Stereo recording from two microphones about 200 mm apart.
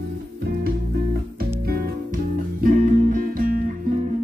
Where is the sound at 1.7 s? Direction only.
50° right (ahead or behind).